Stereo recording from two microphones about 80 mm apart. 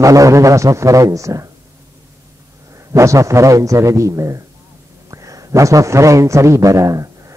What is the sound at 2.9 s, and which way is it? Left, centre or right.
A man's voice, right.